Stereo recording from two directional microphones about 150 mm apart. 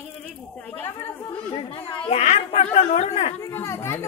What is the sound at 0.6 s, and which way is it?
Speech, 10° left (ahead or behind).